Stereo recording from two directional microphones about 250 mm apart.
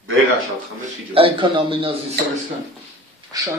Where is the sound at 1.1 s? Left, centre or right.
Right.